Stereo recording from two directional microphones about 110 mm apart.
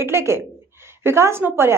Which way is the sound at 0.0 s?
25° right (ahead or behind).